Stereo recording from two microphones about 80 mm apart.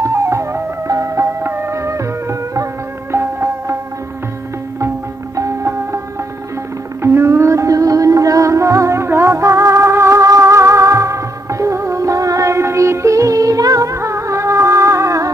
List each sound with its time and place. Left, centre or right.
0.0 s music: right
4.7 s music: right
7.0 s music: right